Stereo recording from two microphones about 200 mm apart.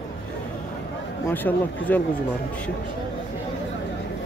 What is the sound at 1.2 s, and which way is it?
Speech, 10° left (ahead or behind).